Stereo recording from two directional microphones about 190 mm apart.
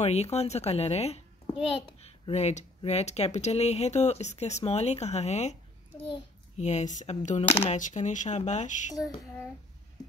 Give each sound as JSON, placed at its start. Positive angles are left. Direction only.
{"t": 0.0, "sound": "a woman's voice", "side_deg": 35}
{"t": 8.9, "sound": "child singing", "side_deg": 20}